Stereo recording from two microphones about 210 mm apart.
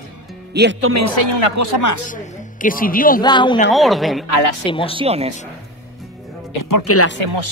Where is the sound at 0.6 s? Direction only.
50° right (ahead or behind).